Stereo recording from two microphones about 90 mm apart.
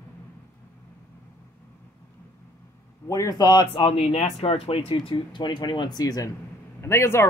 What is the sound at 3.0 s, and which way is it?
Speech, 40° left (ahead or behind).